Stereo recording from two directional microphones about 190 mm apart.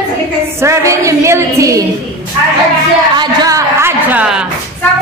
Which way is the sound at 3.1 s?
20° right (ahead or behind).